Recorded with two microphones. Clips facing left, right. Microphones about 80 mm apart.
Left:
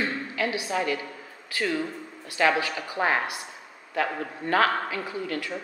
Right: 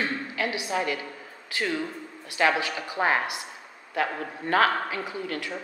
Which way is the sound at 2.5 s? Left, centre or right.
Right.